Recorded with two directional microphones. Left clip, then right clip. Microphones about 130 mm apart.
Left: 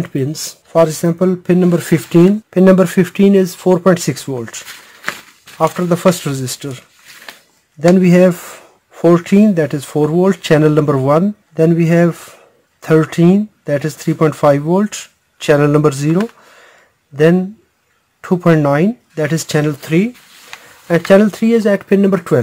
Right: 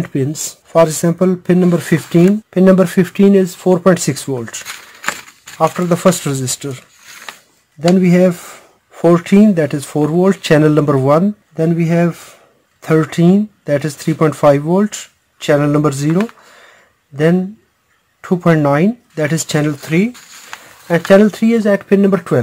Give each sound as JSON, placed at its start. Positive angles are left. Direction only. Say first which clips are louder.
{"t": 0.0, "sound": "speech", "louder": "right 1 dB", "side_deg": 0}
{"t": 5.8, "sound": "speech", "louder": "even", "side_deg": 10}
{"t": 7.9, "sound": "speech", "louder": "left 2 dB", "side_deg": 30}
{"t": 8.9, "sound": "speech", "louder": "even", "side_deg": 10}
{"t": 11.5, "sound": "speech", "louder": "left 4 dB", "side_deg": 30}
{"t": 13.0, "sound": "speech", "louder": "left 1 dB", "side_deg": 15}
{"t": 14.9, "sound": "speech", "louder": "left 1 dB", "side_deg": 20}
{"t": 18.6, "sound": "speech", "louder": "even", "side_deg": 5}
{"t": 21.1, "sound": "speech", "louder": "even", "side_deg": 25}